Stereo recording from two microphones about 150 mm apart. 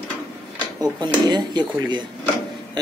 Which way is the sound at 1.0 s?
30° right (ahead or behind).